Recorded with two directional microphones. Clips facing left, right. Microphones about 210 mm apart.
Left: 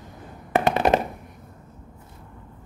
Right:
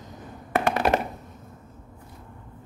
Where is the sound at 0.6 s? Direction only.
20° left (ahead or behind).